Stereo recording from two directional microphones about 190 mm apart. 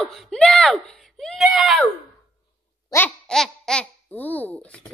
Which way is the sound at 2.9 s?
5° left (ahead or behind).